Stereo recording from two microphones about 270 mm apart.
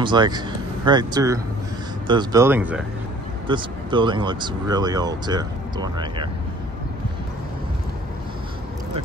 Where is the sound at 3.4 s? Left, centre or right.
Centre.